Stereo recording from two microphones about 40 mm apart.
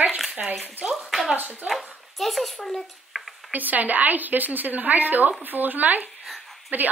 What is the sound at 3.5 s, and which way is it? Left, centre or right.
A woman's voice, right.